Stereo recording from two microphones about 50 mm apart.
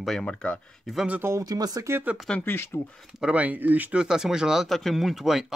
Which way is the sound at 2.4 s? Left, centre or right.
Left.